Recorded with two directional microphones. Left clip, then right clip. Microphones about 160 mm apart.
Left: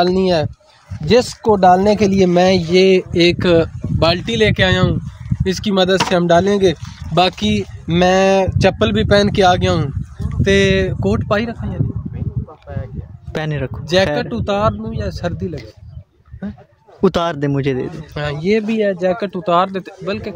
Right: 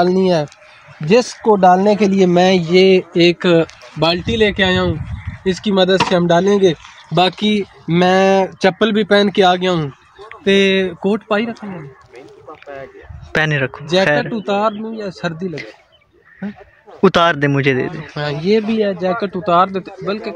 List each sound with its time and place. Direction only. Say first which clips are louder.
0.0 s speech: right 1 dB; 25° right (ahead or behind); by 6.8 s centre (ahead or behind)
7.2 s speech: even; 15° left (ahead or behind)
13.3 s speech: right 7 dB; 10° left (ahead or behind)
18.1 s speech: right 1 dB; 25° left (ahead or behind)